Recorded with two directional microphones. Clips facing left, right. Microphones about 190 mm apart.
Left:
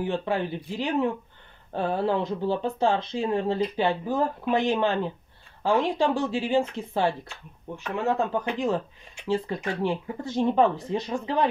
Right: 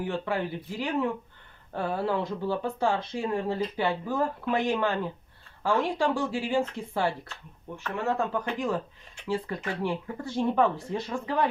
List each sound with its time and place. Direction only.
0.0 s speech: 25° left (ahead or behind)